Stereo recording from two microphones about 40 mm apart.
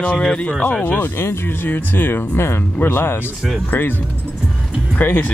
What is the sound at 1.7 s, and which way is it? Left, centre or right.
Speech, left.